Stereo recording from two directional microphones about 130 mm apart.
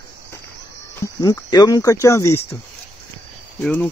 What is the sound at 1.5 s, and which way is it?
Speech, 30° left (ahead or behind).